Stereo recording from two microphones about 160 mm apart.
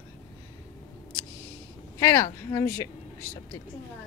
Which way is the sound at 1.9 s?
20° left (ahead or behind).